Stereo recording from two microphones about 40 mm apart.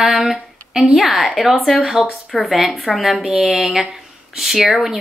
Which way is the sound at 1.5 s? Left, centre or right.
Centre.